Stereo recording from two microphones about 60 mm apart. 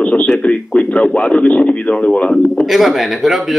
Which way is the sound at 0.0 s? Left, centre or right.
Left.